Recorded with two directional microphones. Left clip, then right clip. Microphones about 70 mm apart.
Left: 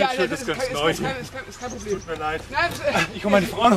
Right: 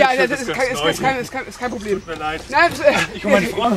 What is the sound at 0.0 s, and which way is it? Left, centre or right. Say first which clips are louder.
A man's voice: right 7 dB; right.